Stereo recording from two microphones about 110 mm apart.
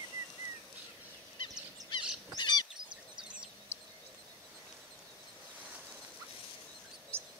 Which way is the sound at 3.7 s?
25° left (ahead or behind).